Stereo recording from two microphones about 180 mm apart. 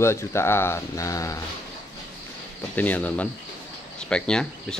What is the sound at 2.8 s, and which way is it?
Speech, 10° left (ahead or behind).